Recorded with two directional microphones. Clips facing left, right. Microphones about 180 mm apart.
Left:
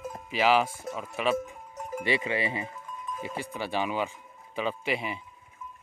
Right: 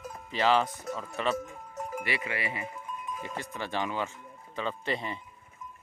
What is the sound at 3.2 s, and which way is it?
Speech, 10° left (ahead or behind).